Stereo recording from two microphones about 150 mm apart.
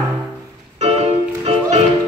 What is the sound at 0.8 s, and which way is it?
Music, 45° right (ahead or behind).